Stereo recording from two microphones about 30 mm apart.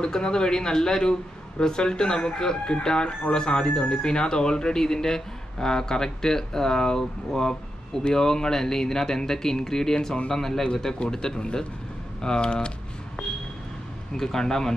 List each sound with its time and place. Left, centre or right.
0.0 s speech: left
7.3 s a sound: centre
8.1 s speech: centre
14.1 s speech: centre